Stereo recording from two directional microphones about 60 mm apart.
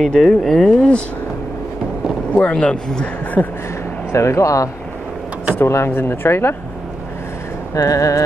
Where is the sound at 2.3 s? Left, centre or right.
Centre.